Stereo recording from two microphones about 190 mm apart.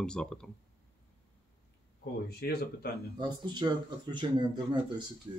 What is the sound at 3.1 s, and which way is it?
Speech, 25° right (ahead or behind).